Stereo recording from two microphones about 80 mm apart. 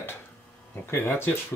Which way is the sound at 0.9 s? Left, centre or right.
Left.